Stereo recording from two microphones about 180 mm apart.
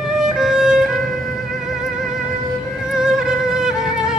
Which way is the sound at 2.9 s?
5° right (ahead or behind).